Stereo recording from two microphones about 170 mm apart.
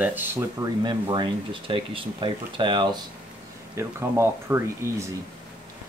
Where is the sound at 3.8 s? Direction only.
15° right (ahead or behind).